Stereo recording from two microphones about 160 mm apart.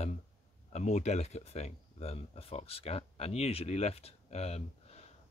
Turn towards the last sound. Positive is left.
turn(degrees=40)  # may be behind; listen again after turning